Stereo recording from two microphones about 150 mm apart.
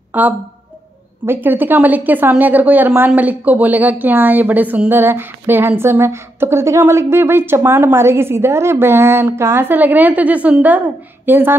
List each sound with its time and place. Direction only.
0.1 s speech: 10° right (ahead or behind)